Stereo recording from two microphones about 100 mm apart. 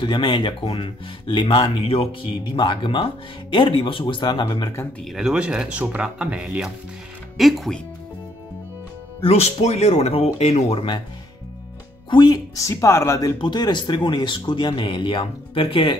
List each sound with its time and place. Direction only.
0.0 s speech: 55° left (ahead or behind)
2.5 s speech: 50° left (ahead or behind)
5.0 s speech: 5° right (ahead or behind)
9.2 s speech: 90° left
12.1 s speech: 50° left (ahead or behind)
12.5 s speech: 30° left (ahead or behind)
13.4 s speech: 50° left (ahead or behind)